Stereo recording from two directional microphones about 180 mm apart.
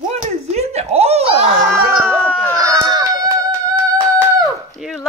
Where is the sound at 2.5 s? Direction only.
20° right (ahead or behind).